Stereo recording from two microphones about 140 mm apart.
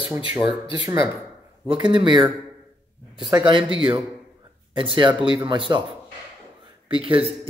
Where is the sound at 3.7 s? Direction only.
40° right (ahead or behind).